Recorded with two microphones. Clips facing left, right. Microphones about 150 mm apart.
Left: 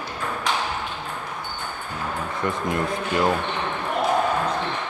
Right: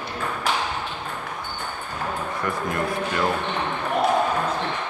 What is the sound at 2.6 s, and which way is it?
Speech, 20° left (ahead or behind).